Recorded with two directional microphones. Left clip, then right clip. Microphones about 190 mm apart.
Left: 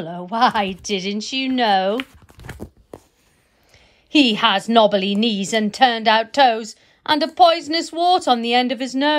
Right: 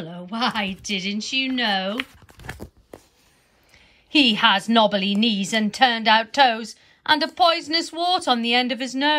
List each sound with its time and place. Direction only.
0.0 s a woman's voice: 10° left (ahead or behind)
2.5 s tearing: 15° left (ahead or behind)
4.1 s a woman's voice: 10° left (ahead or behind)